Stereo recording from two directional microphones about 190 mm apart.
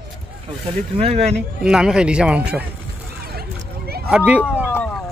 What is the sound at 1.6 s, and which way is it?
Speech, 5° right (ahead or behind).